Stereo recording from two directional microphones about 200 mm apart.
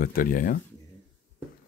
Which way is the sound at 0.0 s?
45° left (ahead or behind).